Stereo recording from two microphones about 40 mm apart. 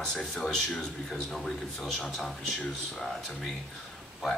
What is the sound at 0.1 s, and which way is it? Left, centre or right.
Speech, centre.